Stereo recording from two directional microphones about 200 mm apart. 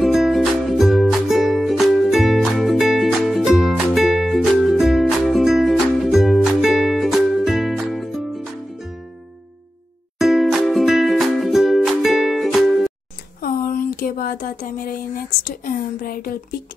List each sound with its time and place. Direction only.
0.0 s music: centre (ahead or behind)
10.1 s music: centre (ahead or behind)
13.4 s a sound: 45° left (ahead or behind)
15.4 s a woman's voice: 45° left (ahead or behind)